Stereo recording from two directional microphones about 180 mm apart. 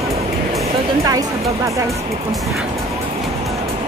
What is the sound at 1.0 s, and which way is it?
Speech, 20° right (ahead or behind).